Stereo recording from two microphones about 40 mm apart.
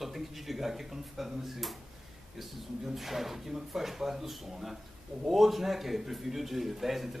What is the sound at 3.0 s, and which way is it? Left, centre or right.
Speech, centre.